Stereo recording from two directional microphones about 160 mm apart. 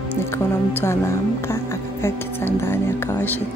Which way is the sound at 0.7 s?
15° left (ahead or behind).